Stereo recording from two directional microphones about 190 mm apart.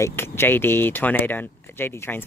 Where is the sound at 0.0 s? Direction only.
15° left (ahead or behind).